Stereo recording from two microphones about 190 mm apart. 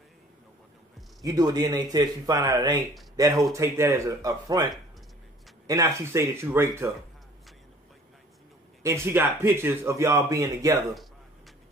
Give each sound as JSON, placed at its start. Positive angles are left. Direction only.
{"t": 1.2, "sound": "speech", "side_deg": -20}
{"t": 5.7, "sound": "speech", "side_deg": -15}
{"t": 8.8, "sound": "speech", "side_deg": -15}